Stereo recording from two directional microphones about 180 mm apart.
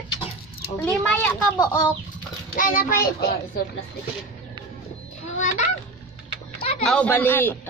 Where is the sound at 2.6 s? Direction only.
50° left (ahead or behind).